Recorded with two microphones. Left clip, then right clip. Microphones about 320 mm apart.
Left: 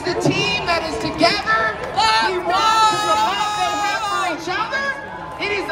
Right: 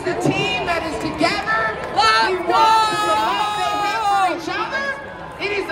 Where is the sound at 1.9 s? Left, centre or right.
Right.